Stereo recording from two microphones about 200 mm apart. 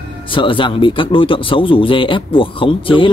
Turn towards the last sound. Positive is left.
turn(degrees=25)  # may be behind; listen again after turning